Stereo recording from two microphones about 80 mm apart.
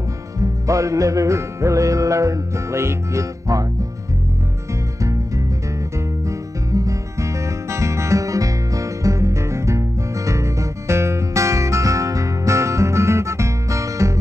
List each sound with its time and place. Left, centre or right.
0.4 s music: right
6.2 s music: right